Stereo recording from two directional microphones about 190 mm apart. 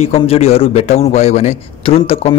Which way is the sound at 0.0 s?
30° left (ahead or behind).